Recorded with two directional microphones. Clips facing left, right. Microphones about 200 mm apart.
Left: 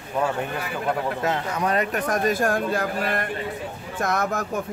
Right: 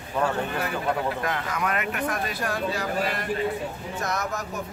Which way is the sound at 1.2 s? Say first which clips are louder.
Left 3 dB; 30° left (ahead or behind).